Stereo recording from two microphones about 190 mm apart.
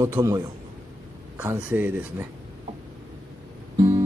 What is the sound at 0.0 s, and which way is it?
Speech, 15° right (ahead or behind).